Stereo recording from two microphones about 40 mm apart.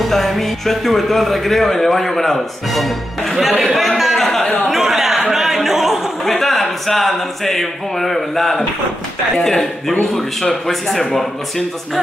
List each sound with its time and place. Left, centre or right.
0.0 s speech: centre
4.2 s a sound: centre
4.7 s chatter: centre
6.2 s speech: centre